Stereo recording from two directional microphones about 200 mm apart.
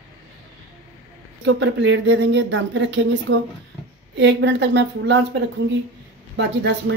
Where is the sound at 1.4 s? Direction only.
65° right (ahead or behind).